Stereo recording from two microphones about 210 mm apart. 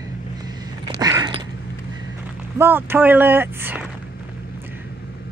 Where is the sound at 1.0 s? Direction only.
15° right (ahead or behind).